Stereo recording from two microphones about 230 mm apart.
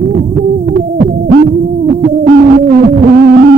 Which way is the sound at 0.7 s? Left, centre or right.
Right.